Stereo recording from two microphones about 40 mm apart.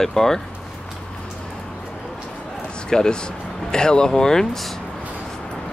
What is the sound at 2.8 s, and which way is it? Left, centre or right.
Speech, centre.